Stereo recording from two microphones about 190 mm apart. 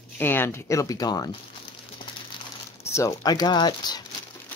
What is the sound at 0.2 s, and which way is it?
A woman's voice, 10° left (ahead or behind).